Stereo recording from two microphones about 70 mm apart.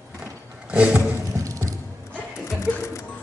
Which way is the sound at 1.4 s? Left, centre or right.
Right.